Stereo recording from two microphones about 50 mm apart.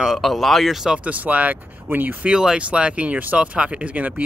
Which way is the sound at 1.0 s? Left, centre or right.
Right.